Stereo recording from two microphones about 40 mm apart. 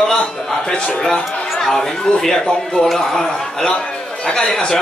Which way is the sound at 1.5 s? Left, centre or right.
Centre.